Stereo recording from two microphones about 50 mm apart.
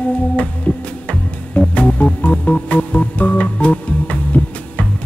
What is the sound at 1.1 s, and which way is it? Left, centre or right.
Music, left.